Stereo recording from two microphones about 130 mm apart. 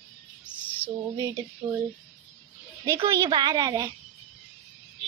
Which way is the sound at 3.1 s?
30° right (ahead or behind).